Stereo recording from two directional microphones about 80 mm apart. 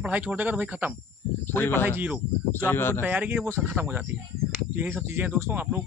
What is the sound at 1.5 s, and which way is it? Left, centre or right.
Speech, left.